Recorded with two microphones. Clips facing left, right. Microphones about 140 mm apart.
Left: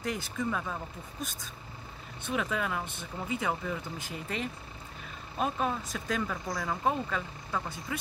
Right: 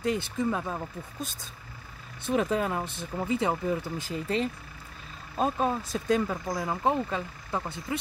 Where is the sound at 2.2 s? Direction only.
35° right (ahead or behind).